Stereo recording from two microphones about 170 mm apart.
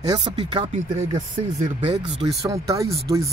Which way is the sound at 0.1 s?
25° right (ahead or behind).